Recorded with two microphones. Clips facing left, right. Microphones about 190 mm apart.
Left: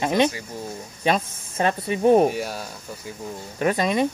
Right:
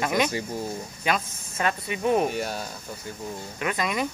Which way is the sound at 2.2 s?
5° left (ahead or behind).